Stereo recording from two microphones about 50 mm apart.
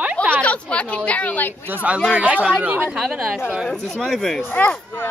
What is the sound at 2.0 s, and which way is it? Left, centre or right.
Speech, right.